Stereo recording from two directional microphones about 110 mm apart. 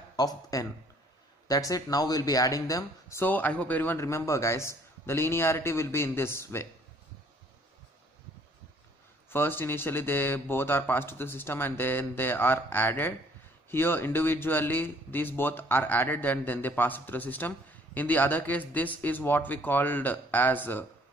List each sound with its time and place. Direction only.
0.1 s speech: 35° left (ahead or behind)
9.3 s speech: 20° left (ahead or behind)